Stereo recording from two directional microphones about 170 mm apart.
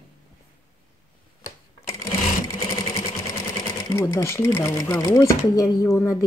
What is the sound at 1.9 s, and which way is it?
Sewing machine, 15° left (ahead or behind).